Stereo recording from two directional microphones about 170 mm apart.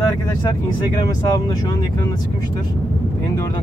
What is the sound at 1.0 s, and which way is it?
Speech, 25° left (ahead or behind).